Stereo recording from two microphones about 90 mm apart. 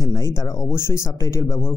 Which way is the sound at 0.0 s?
40° left (ahead or behind).